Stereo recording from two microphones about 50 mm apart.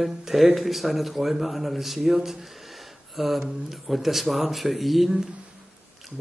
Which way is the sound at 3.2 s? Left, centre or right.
Centre.